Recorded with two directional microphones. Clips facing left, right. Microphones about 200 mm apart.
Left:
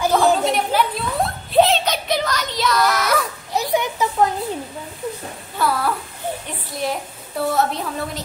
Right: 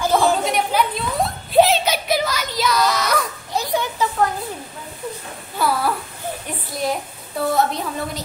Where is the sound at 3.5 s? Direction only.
20° left (ahead or behind).